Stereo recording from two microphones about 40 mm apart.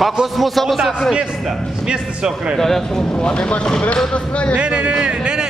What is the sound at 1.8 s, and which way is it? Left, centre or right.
Speech, right.